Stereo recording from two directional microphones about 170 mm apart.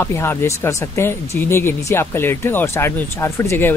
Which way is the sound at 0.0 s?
15° left (ahead or behind).